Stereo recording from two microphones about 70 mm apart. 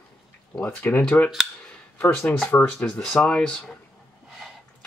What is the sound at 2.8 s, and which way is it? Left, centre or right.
Speech, centre.